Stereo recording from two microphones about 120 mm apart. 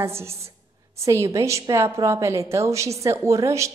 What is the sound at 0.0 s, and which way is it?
A woman's voice, 20° right (ahead or behind).